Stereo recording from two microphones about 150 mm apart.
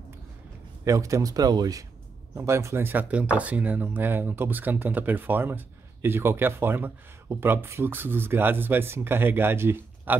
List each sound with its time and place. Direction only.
0.8 s speech: 20° right (ahead or behind)